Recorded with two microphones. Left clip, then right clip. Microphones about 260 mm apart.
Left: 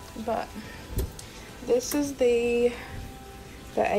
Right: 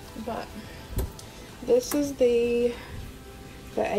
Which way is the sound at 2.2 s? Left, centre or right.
Centre.